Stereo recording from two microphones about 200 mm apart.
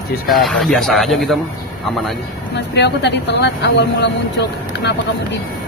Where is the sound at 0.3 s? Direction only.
Centre (ahead or behind).